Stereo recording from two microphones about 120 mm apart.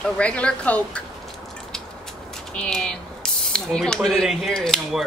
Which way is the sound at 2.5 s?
5° left (ahead or behind).